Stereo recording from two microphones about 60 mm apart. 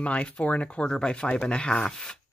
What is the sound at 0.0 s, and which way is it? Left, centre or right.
Speech, left.